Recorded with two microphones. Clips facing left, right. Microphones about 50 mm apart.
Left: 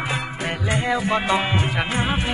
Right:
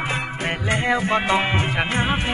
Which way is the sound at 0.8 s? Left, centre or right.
Right.